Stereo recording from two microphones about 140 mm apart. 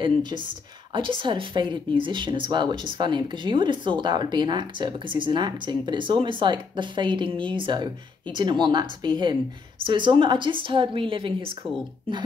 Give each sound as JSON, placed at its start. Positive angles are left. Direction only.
{"t": 0.0, "sound": "speech", "side_deg": -35}